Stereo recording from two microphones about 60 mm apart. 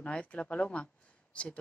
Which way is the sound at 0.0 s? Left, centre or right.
Left.